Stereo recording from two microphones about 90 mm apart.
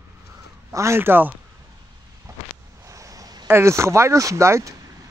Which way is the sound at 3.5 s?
30° right (ahead or behind).